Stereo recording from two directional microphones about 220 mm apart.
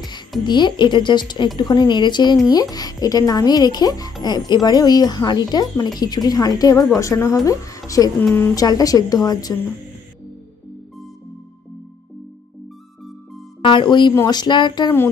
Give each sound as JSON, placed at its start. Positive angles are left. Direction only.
{"t": 0.4, "sound": "speech", "side_deg": 20}
{"t": 13.6, "sound": "speech", "side_deg": 20}